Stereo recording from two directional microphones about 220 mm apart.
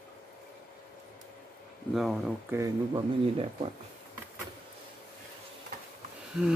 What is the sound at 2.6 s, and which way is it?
Speech, 15° right (ahead or behind).